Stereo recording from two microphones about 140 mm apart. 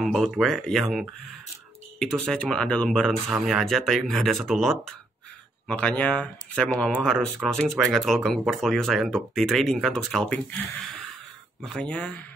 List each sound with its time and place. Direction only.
0.0 s speech: centre (ahead or behind)